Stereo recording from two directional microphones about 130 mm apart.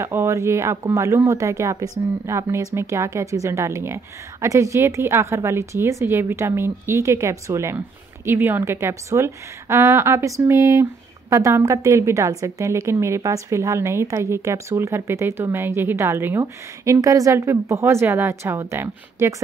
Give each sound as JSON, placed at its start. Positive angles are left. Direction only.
{"t": 0.0, "sound": "a woman's voice", "side_deg": -20}